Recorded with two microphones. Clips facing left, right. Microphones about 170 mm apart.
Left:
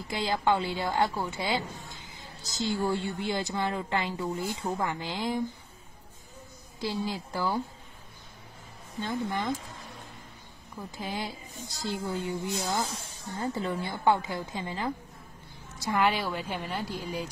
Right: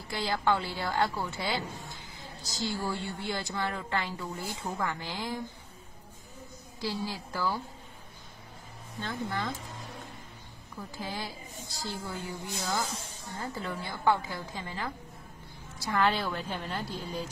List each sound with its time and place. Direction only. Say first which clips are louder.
0.1 s speech: left 2 dB; 20° left (ahead or behind)
6.8 s speech: left 3 dB; 20° left (ahead or behind)
9.0 s a woman's voice: left 3 dB; 15° left (ahead or behind)
11.0 s a woman's voice: left 3 dB; 20° left (ahead or behind)